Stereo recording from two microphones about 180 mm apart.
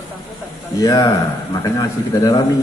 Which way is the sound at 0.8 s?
20° left (ahead or behind).